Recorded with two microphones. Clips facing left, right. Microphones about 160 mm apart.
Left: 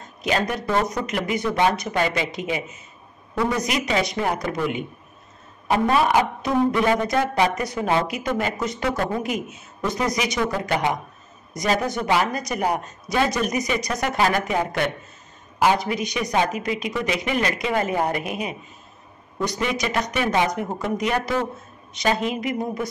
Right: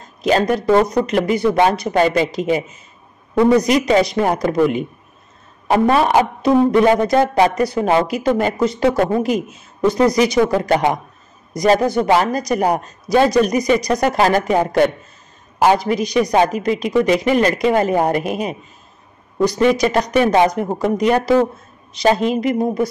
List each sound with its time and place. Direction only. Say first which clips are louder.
0.2 s a woman's voice: right 8 dB; 35° right (ahead or behind)